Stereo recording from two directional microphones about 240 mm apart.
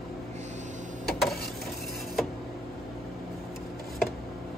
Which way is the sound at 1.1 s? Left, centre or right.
Centre.